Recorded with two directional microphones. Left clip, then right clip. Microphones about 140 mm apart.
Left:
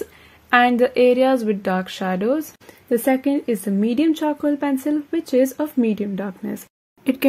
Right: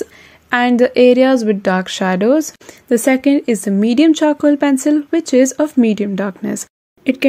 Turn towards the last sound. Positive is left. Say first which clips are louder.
# right 5 dB
turn(degrees=-10)  # may be behind; listen again after turning